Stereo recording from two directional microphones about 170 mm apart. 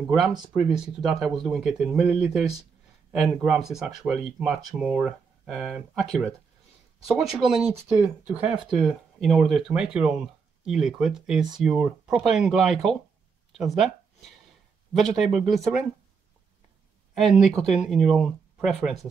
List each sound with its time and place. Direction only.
0.0 s speech: centre (ahead or behind)
0.3 s speech: 25° right (ahead or behind)
0.7 s speech: 5° right (ahead or behind)
15.0 s speech: centre (ahead or behind)
17.2 s speech: centre (ahead or behind)